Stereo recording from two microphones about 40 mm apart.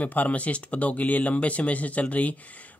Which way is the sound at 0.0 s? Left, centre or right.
Left.